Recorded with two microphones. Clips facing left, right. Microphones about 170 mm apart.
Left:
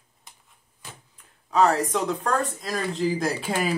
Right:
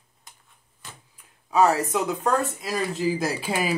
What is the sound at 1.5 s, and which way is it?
Speech, 10° right (ahead or behind).